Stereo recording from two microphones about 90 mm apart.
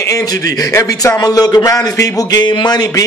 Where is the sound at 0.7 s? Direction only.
40° left (ahead or behind).